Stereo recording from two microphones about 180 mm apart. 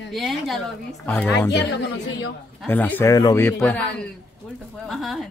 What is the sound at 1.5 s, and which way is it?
Speech, 70° left (ahead or behind).